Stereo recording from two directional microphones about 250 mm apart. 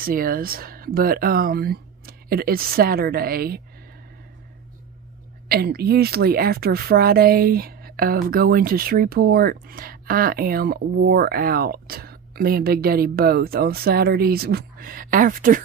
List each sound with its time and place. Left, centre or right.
0.0 s speech: right
5.5 s speech: right